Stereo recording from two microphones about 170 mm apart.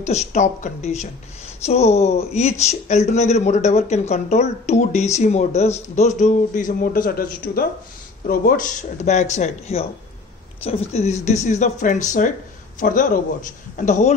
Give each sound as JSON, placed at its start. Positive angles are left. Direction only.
{"t": 0.0, "sound": "speech", "side_deg": 40}